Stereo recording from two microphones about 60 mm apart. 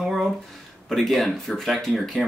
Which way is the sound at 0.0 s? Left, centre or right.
Centre.